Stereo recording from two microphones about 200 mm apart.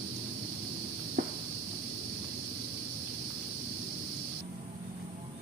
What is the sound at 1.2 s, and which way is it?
Cricket, 55° right (ahead or behind).